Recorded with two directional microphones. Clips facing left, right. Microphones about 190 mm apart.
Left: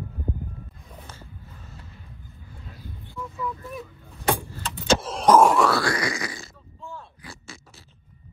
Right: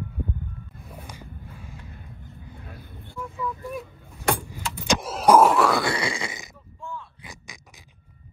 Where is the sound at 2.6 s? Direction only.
55° right (ahead or behind).